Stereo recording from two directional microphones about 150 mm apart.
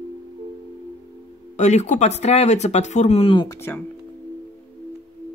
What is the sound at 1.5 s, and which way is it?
Speech, 50° left (ahead or behind).